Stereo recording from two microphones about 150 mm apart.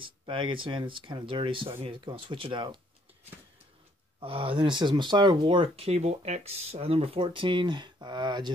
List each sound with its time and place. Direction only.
0.0 s speech: 35° right (ahead or behind)
4.2 s speech: 35° right (ahead or behind)